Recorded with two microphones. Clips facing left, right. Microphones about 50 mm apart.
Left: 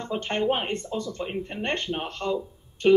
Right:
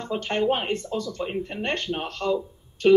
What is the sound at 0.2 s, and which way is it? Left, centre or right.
Speech, left.